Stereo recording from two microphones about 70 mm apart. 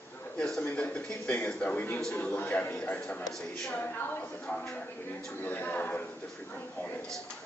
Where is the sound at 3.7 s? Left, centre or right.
Left.